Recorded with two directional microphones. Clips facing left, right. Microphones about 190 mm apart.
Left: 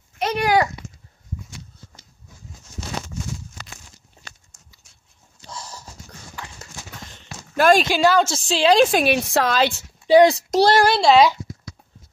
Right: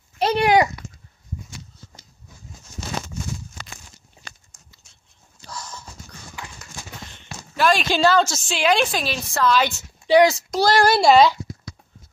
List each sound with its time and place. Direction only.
0.2 s a sound: 30° right (ahead or behind)
0.8 s babbling: 25° left (ahead or behind)
5.5 s clip-clop: 30° left (ahead or behind)
7.5 s speech: 50° left (ahead or behind)
7.9 s a woman's voice: 10° left (ahead or behind)
8.3 s a woman's voice: 30° left (ahead or behind)
8.9 s a woman's voice: 60° left (ahead or behind)
9.6 s a woman's voice: 30° left (ahead or behind)
10.8 s speech: centre (ahead or behind)